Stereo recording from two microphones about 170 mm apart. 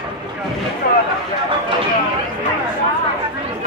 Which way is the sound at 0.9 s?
60° left (ahead or behind).